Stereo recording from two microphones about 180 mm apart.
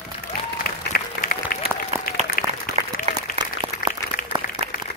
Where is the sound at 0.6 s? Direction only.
55° left (ahead or behind).